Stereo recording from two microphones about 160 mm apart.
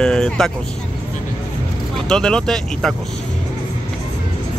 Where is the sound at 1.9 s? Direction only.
5° left (ahead or behind).